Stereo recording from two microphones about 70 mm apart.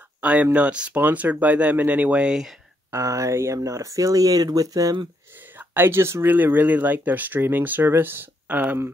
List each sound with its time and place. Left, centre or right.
0.2 s speech: right
2.9 s speech: right
5.6 s speech: right
6.2 s speech: right